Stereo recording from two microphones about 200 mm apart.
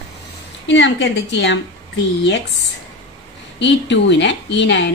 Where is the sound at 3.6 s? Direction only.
60° left (ahead or behind).